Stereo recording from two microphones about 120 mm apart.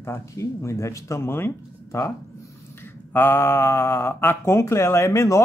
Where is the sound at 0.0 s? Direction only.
25° left (ahead or behind).